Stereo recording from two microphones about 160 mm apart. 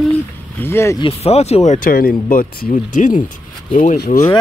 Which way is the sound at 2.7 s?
50° left (ahead or behind).